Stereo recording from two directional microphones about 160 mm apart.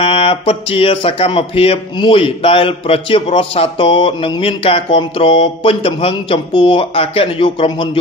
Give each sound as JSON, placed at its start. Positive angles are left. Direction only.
{"t": 0.0, "sound": "speech", "side_deg": 35}